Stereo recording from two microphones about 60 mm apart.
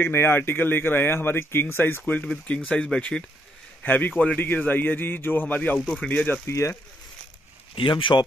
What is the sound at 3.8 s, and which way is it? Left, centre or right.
Speech, left.